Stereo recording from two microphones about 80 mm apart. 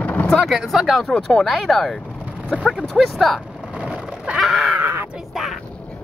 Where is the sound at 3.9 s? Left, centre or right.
Centre.